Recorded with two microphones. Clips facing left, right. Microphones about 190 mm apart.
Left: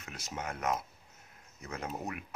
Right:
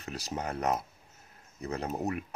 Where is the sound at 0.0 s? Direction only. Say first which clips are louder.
Right 5 dB; 35° right (ahead or behind).